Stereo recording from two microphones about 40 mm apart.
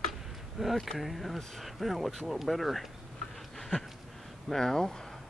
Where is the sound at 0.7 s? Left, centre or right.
Centre.